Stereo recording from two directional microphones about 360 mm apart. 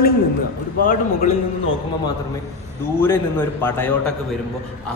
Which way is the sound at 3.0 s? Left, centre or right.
Centre.